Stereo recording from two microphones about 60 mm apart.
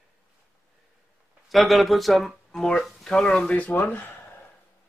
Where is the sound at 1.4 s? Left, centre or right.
Centre.